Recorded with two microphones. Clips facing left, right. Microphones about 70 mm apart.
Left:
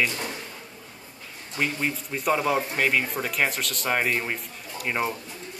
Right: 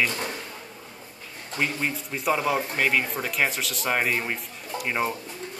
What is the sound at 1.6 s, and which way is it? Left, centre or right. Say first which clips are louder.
Speech: even; centre.